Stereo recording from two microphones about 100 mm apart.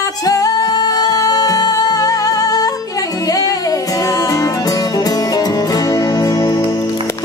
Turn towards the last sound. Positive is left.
turn(degrees=40)  # may be behind; listen again after turning